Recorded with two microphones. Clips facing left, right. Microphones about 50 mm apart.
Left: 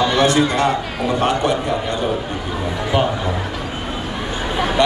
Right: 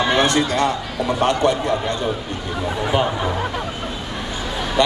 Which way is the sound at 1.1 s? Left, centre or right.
Centre.